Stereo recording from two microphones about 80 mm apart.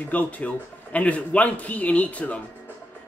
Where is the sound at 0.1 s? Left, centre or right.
Centre.